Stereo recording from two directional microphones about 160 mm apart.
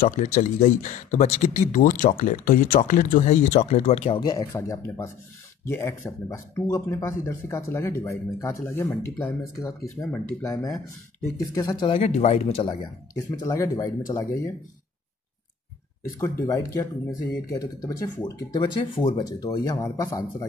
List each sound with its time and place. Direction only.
0.0 s speech: 50° left (ahead or behind)
12.6 s speech: 25° left (ahead or behind)
16.2 s speech: 20° left (ahead or behind)